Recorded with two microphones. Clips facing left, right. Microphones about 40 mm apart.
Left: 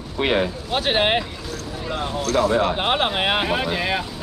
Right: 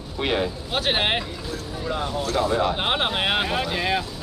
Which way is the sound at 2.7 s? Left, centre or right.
Centre.